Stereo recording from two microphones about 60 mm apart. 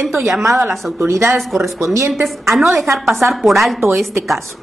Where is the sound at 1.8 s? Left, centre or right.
Right.